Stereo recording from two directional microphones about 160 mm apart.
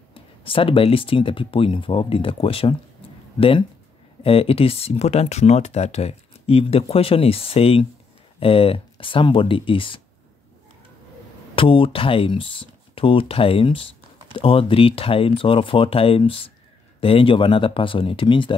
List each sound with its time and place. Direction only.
0.1 s speech: 35° left (ahead or behind)
11.5 s speech: 35° left (ahead or behind)